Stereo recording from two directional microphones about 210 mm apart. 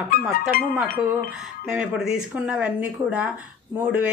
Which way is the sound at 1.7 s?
5° right (ahead or behind).